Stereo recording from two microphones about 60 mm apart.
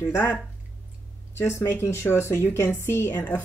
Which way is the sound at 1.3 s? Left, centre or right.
Left.